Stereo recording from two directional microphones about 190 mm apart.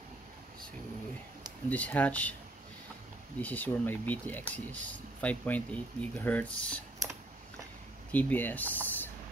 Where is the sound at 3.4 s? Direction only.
10° left (ahead or behind).